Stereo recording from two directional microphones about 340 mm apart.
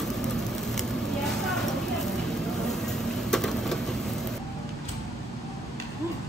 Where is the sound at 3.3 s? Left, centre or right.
Centre.